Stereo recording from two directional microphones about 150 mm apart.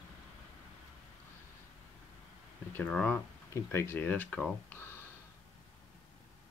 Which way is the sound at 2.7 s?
10° left (ahead or behind).